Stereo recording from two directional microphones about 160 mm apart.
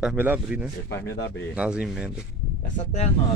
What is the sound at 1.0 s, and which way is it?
Speech, 90° left.